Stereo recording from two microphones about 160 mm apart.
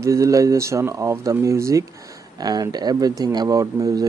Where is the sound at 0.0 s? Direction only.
20° right (ahead or behind).